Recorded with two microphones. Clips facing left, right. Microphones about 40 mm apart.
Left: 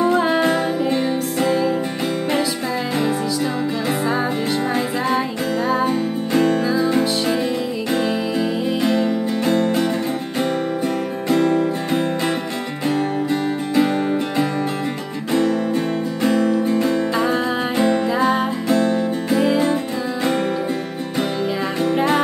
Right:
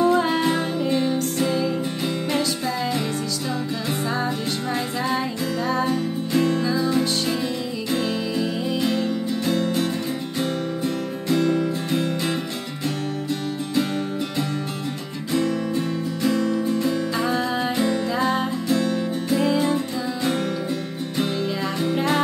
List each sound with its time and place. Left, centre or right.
0.0 s music: centre
1.4 s music: left
5.9 s music: left
6.6 s music: left
11.2 s music: left
15.3 s music: left